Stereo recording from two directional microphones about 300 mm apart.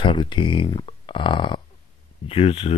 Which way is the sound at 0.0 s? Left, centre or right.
Centre.